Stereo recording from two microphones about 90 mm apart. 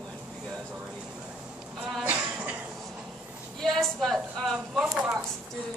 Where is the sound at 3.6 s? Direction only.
5° left (ahead or behind).